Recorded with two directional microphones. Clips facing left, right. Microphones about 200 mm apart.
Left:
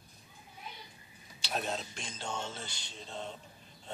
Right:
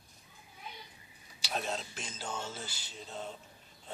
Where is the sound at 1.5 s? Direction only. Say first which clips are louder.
Left 1 dB; centre (ahead or behind).